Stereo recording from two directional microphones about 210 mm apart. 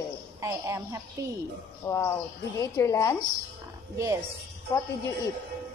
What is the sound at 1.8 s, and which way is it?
A woman's voice, 15° left (ahead or behind).